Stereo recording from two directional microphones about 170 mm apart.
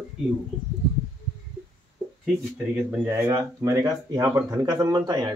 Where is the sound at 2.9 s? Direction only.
15° right (ahead or behind).